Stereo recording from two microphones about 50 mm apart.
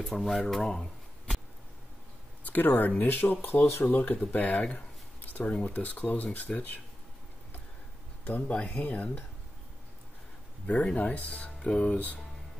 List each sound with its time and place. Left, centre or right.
0.0 s speech: centre
2.4 s speech: left
8.3 s speech: left
10.7 s speech: left